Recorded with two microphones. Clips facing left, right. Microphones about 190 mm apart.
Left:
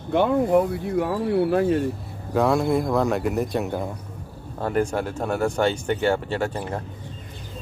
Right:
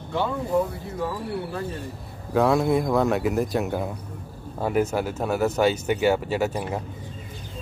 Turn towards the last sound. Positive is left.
turn(degrees=-10)  # may be behind; listen again after turning